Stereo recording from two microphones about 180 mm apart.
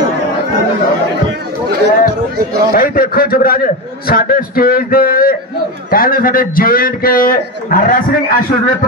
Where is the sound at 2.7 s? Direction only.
55° left (ahead or behind).